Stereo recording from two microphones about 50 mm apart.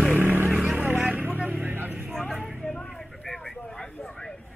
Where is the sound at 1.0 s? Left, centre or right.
Right.